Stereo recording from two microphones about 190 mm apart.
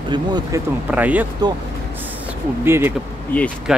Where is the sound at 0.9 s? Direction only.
10° right (ahead or behind).